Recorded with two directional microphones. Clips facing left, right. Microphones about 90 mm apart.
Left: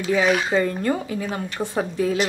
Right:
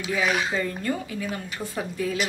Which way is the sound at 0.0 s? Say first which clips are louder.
Left 5 dB; 35° left (ahead or behind).